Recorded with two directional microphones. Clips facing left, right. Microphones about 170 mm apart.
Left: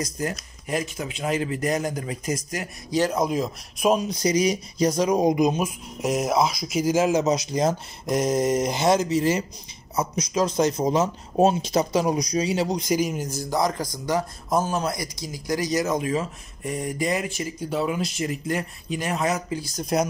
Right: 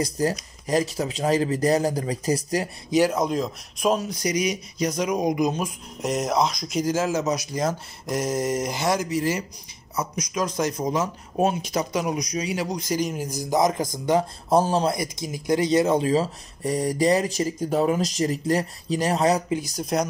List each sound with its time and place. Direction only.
0.0 s speech: 35° right (ahead or behind)
3.1 s speech: 5° left (ahead or behind)
4.1 s speech: 25° left (ahead or behind)
5.5 s speech: 5° left (ahead or behind)
13.2 s a man's voice: 15° right (ahead or behind); by 19.4 s 35° right (ahead or behind)
19.5 s speech: 15° right (ahead or behind)
19.8 s speech: centre (ahead or behind)